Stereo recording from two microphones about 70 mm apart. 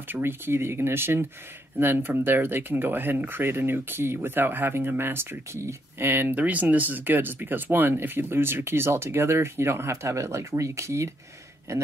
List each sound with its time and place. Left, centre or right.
0.1 s a man's voice: right